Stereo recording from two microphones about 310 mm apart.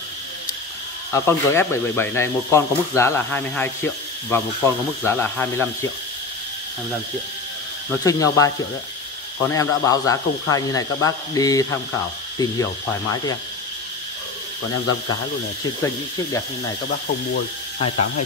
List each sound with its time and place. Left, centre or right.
1.1 s speech: centre
8.0 s speech: centre
9.5 s speech: centre
13.1 s speech: centre
17.7 s speech: centre